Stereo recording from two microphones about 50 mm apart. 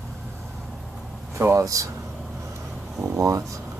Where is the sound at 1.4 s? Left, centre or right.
Right.